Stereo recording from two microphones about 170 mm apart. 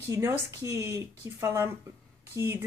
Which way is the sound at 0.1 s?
15° right (ahead or behind).